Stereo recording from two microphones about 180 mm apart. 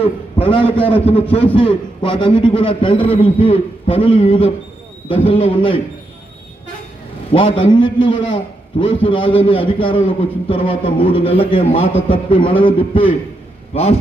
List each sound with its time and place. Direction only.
0.0 s a man's voice: 30° left (ahead or behind)
7.3 s a man's voice: 30° left (ahead or behind)